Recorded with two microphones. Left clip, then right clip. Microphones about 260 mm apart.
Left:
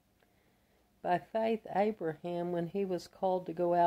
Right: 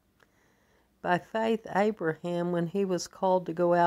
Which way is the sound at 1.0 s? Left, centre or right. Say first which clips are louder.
Right 4 dB; right.